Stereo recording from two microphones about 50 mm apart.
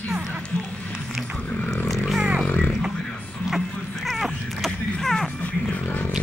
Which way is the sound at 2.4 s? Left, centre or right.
Left.